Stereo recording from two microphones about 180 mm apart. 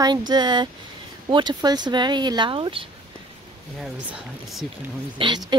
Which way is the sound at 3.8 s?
5° right (ahead or behind).